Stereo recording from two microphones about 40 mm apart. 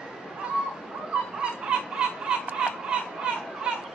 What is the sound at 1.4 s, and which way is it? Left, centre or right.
Fowl, right.